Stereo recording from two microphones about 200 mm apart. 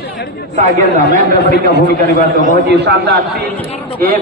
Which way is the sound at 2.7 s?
60° right (ahead or behind).